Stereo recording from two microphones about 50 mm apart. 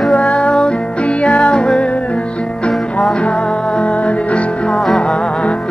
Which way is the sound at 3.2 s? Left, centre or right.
Left.